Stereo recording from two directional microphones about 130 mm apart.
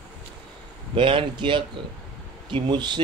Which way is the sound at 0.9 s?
40° right (ahead or behind).